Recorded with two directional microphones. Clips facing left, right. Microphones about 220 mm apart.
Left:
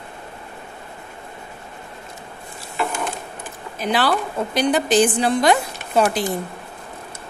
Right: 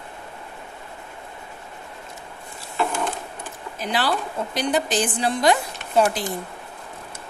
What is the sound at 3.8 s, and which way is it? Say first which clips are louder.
A woman's voice: left 4 dB; 65° left (ahead or behind).